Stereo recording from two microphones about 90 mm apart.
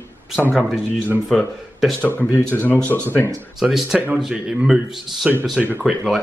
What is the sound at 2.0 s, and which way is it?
Speech, 20° left (ahead or behind).